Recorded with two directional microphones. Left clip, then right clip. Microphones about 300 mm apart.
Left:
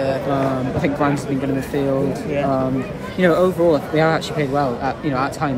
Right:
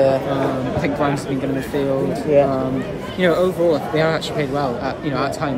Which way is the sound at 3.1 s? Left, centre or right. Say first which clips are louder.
Left 1 dB; centre.